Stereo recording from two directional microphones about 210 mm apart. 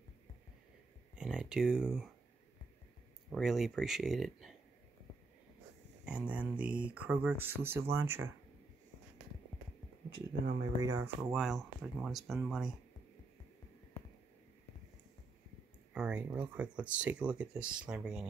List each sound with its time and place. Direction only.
1.1 s a sound: 5° right (ahead or behind)
3.3 s speech: centre (ahead or behind)
6.0 s speech: 5° right (ahead or behind)
10.4 s speech: 40° right (ahead or behind)
10.8 s speech: 15° right (ahead or behind)
11.3 s speech: centre (ahead or behind)
15.9 s speech: 5° right (ahead or behind)